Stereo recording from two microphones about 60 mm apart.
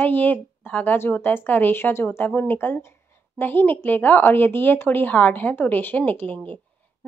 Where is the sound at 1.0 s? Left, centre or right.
Left.